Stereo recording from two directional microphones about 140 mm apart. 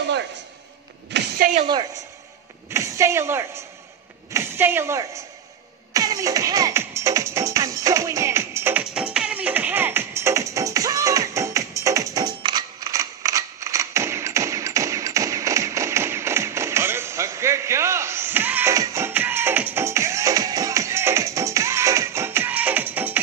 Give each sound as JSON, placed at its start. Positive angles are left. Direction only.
{"t": 1.4, "sound": "a woman's voice", "side_deg": -85}
{"t": 2.7, "sound": "speech", "side_deg": -20}
{"t": 5.9, "sound": "music", "side_deg": -25}